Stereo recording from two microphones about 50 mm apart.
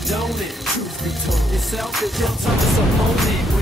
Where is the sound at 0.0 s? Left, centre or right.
Centre.